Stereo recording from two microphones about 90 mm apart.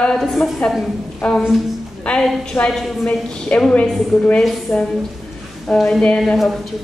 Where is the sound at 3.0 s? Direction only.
10° left (ahead or behind).